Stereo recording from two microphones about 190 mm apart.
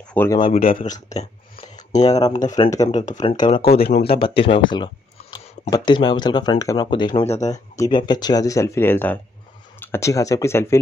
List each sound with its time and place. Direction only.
0.1 s speech: 10° left (ahead or behind)
0.8 s a sound: 40° left (ahead or behind)
2.1 s speech: 20° left (ahead or behind)
3.8 s speech: 55° left (ahead or behind)
4.1 s speech: 30° left (ahead or behind)